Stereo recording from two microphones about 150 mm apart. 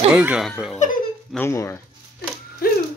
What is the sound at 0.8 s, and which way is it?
Speech, 55° left (ahead or behind).